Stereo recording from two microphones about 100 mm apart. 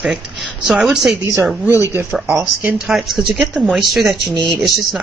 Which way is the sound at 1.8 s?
25° right (ahead or behind).